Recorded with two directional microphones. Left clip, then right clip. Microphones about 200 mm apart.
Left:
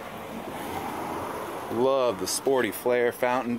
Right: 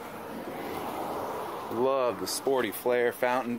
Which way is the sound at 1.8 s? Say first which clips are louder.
Left 3 dB; centre (ahead or behind).